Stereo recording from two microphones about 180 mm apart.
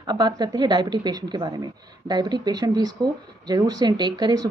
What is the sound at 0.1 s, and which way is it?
Speech, 20° right (ahead or behind).